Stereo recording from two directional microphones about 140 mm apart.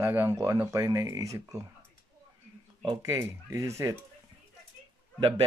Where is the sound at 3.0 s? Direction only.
25° right (ahead or behind).